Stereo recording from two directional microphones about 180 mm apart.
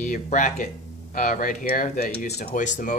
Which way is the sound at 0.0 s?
45° left (ahead or behind).